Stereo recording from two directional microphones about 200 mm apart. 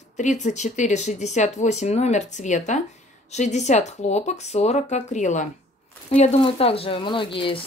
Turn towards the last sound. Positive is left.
turn(degrees=25)  # may be behind; listen again after turning